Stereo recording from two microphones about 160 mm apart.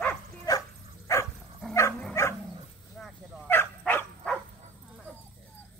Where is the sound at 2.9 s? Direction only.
Centre (ahead or behind).